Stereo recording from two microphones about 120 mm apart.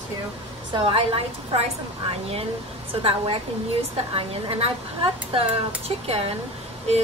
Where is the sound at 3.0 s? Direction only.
50° right (ahead or behind).